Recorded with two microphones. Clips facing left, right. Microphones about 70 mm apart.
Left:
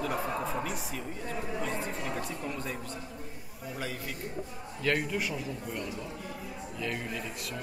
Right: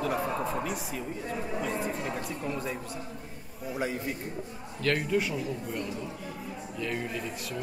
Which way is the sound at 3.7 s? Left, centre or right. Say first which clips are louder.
Right 6 dB; right.